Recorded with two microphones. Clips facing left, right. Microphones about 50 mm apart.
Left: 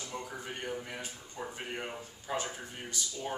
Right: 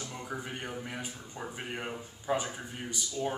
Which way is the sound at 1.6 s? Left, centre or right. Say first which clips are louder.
Right 3 dB; centre.